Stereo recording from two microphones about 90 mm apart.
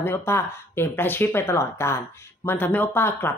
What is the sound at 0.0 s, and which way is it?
Speech, 25° left (ahead or behind).